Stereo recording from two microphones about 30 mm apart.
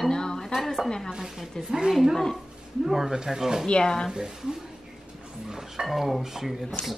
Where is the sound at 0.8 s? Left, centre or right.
Left.